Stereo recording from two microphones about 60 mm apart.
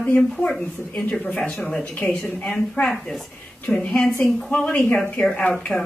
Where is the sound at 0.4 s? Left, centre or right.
Centre.